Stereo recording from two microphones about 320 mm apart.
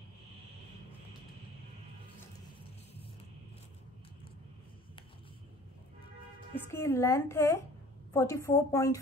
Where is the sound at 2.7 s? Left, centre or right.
Centre.